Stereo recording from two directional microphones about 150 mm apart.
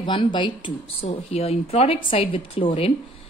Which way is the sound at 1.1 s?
45° left (ahead or behind).